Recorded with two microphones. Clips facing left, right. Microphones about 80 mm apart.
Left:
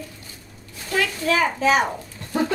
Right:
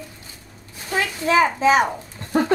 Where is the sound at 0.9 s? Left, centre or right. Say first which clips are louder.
Right 3 dB; right.